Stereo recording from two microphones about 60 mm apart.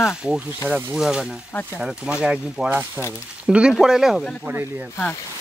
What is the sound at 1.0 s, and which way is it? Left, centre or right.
Speech, centre.